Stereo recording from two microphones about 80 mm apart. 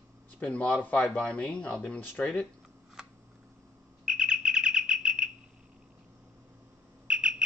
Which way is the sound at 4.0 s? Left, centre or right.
Centre.